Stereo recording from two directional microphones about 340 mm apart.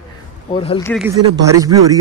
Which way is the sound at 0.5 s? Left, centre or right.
Centre.